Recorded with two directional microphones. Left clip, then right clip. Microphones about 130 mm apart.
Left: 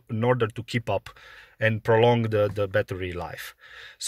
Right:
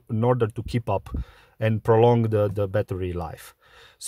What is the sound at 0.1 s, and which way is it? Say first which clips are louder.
Speech: right 1 dB; 40° right (ahead or behind).